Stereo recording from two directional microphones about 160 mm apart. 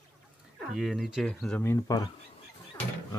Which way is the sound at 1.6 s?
20° left (ahead or behind).